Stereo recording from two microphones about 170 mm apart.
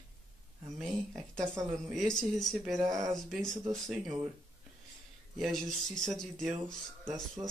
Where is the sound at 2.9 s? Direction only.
20° right (ahead or behind).